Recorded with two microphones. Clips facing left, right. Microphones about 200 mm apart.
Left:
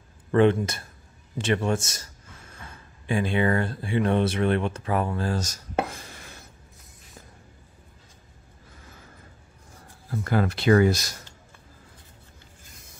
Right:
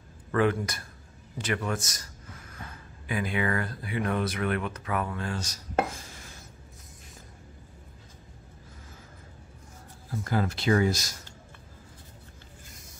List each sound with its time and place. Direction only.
0.3 s speech: 25° left (ahead or behind)
3.1 s speech: 30° left (ahead or behind)
5.9 s chopping: 60° left (ahead or behind)
10.2 s speech: 65° left (ahead or behind)